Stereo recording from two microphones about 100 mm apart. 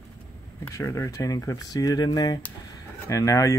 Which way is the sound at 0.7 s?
30° left (ahead or behind).